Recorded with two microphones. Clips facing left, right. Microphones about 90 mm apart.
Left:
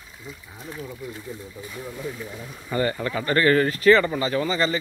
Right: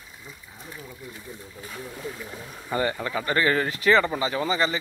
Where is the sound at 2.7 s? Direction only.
15° right (ahead or behind).